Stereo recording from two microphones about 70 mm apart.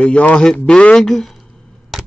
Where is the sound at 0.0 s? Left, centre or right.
Centre.